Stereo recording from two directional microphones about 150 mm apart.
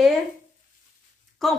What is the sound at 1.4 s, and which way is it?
Speech, centre (ahead or behind).